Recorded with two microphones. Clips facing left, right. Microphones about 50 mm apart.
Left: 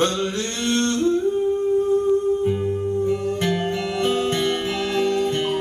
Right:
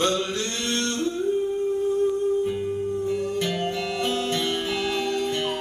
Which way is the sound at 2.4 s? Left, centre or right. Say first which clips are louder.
Left 4 dB; centre.